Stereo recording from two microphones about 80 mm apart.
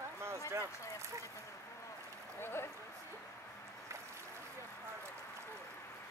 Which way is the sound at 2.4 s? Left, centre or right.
Left.